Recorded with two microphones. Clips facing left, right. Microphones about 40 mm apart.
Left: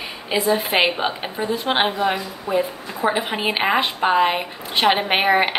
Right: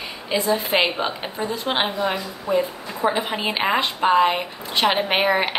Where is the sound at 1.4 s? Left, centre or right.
Left.